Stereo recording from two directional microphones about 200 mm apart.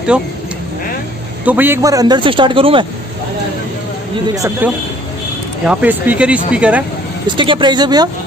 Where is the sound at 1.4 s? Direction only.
10° right (ahead or behind); by 2.8 s 25° right (ahead or behind).